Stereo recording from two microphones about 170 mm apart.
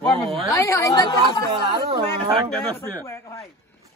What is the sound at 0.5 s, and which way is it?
Speech, 15° left (ahead or behind).